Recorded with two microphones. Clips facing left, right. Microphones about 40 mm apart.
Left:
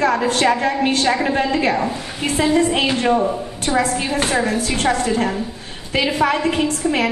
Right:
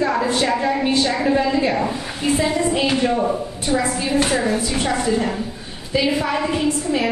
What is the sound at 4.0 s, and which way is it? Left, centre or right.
Speech, left.